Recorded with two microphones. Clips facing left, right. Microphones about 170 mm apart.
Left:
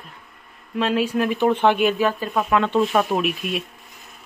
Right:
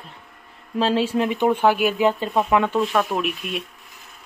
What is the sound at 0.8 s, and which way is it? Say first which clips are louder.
Speech: right 1 dB; 30° right (ahead or behind).